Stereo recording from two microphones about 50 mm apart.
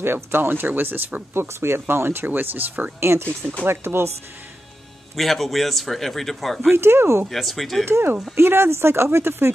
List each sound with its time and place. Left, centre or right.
0.0 s speech: right
3.0 s speech: right
5.1 s speech: centre
6.7 s speech: right
7.2 s speech: centre
7.8 s speech: right